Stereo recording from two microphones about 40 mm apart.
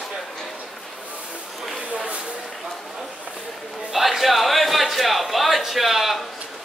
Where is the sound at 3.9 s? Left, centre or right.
Centre.